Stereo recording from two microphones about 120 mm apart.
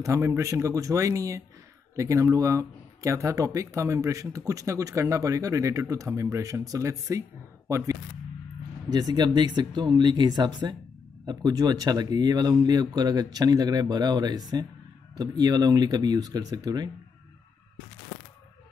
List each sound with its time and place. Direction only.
0.0 s speech: 25° right (ahead or behind)
8.9 s speech: 35° right (ahead or behind)